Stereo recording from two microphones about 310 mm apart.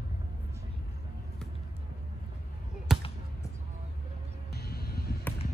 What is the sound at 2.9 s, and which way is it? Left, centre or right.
Basketball bounce, centre.